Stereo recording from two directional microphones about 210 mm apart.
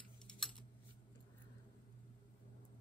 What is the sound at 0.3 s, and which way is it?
Typing, centre (ahead or behind).